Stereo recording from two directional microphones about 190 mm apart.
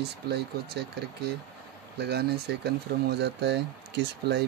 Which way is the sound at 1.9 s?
60° right (ahead or behind).